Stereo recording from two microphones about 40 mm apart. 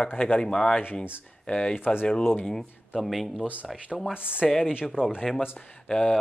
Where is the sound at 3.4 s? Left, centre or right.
Right.